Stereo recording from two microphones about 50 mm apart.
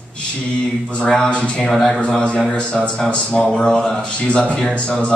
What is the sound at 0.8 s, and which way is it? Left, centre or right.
Speech, left.